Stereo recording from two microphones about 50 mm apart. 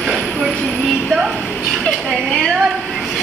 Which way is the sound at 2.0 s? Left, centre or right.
Centre.